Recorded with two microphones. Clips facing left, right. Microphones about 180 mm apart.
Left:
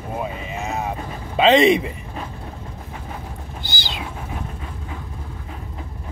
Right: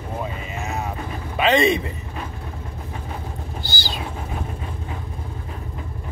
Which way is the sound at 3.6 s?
20° left (ahead or behind).